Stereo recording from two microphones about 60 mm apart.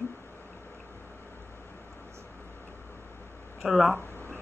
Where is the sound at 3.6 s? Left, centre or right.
Centre.